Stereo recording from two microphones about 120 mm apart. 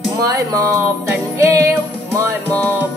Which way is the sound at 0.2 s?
25° right (ahead or behind).